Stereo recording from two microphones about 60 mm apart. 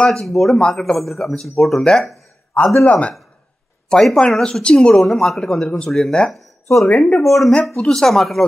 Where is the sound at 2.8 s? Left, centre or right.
Left.